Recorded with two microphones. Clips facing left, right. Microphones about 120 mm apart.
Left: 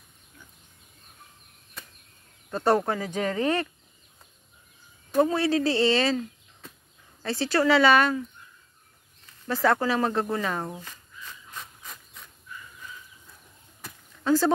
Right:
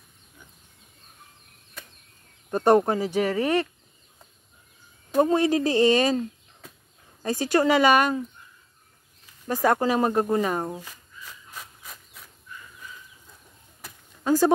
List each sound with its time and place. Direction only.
2.5 s speech: 15° right (ahead or behind)
5.1 s speech: 15° right (ahead or behind)
7.2 s speech: 15° right (ahead or behind)
9.2 s speech: 15° right (ahead or behind)
11.6 s a sound: 5° right (ahead or behind)
13.7 s a sound: 10° right (ahead or behind)